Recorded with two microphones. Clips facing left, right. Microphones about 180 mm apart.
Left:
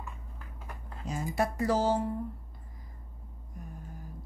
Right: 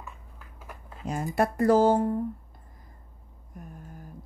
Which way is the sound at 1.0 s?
55° right (ahead or behind).